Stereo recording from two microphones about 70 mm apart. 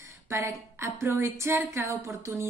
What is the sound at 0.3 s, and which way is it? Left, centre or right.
A woman's voice, right.